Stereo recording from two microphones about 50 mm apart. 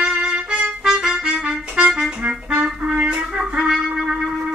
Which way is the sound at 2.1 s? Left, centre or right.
Right.